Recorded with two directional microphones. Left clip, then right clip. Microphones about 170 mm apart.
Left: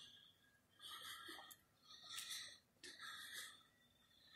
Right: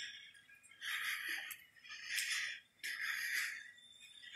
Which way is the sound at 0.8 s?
5° right (ahead or behind).